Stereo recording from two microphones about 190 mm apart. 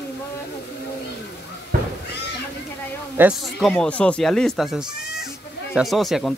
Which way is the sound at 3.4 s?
Centre (ahead or behind).